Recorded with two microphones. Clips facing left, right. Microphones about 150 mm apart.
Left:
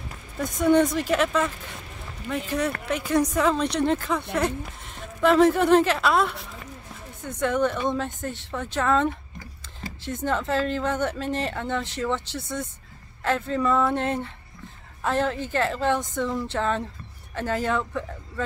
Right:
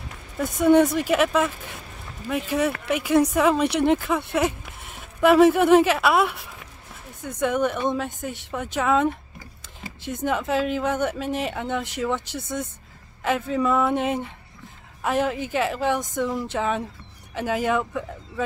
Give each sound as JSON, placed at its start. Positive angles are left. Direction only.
{"t": 0.4, "sound": "speech", "side_deg": -5}
{"t": 7.3, "sound": "speech", "side_deg": -15}